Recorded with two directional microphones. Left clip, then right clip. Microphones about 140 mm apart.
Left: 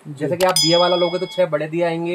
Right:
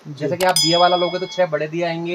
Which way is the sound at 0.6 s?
55° left (ahead or behind).